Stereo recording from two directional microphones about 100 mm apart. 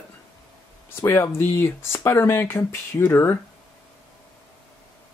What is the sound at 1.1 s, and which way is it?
Speech, 25° left (ahead or behind).